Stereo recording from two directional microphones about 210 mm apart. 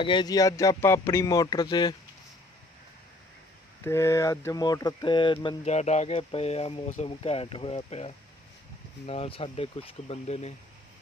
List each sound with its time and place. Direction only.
0.0 s speech: 20° left (ahead or behind)
3.8 s speech: 10° left (ahead or behind); by 10.5 s 30° left (ahead or behind)